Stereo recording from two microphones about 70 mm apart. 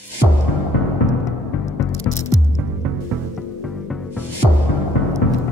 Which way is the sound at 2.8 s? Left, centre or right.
Right.